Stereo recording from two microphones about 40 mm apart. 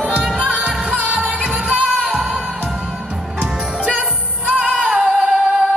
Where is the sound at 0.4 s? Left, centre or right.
Right.